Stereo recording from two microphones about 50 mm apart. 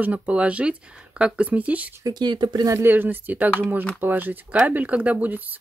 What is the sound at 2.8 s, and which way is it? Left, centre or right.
Speech, right.